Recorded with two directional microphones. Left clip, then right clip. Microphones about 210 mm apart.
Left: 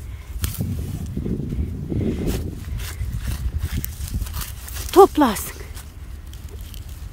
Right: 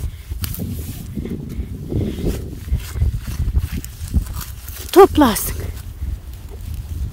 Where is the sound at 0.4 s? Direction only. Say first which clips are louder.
Right 1 dB; 5° right (ahead or behind).